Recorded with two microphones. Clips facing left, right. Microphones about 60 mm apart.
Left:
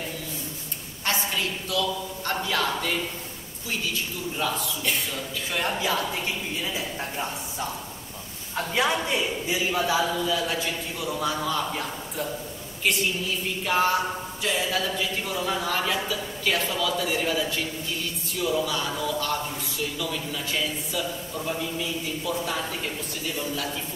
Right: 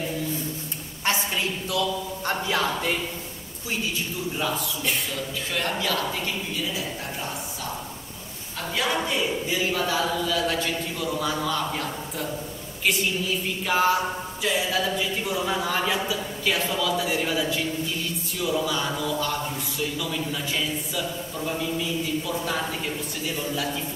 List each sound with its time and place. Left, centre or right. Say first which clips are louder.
1.0 s a sound: right 2 dB; right
2.2 s a woman's voice: right 1 dB; centre
4.4 s a man's voice: left 1 dB; centre; by 7.2 s left
8.8 s a woman's voice: even; left; by 12.3 s centre
13.7 s speech: right 1 dB; centre